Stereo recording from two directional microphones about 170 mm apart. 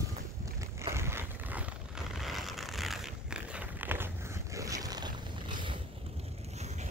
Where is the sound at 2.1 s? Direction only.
Centre (ahead or behind).